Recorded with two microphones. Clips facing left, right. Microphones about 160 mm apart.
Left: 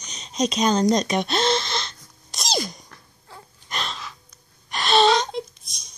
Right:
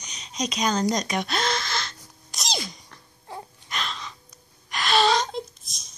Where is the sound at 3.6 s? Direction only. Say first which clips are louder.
Left 3 dB; 35° left (ahead or behind).